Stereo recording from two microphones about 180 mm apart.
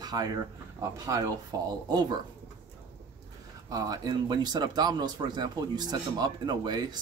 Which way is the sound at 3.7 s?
20° right (ahead or behind).